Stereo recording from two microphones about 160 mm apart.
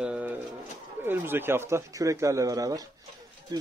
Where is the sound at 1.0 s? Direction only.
15° right (ahead or behind).